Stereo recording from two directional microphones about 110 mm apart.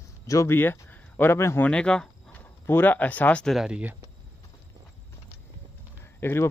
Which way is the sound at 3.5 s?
10° right (ahead or behind).